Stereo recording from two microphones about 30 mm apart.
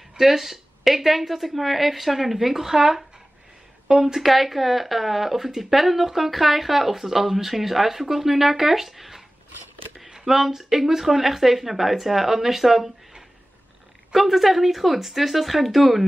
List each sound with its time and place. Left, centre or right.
0.2 s speech: centre
4.3 s speech: centre
9.9 s a sound: right
10.2 s speech: centre
14.1 s speech: centre